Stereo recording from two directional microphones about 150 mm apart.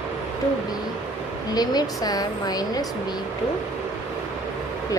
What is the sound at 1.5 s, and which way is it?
A woman's voice, 25° left (ahead or behind).